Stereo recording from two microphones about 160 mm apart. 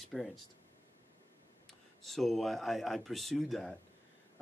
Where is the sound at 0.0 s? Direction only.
Centre (ahead or behind).